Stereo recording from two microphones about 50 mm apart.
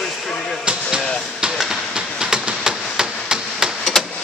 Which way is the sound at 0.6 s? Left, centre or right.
Centre.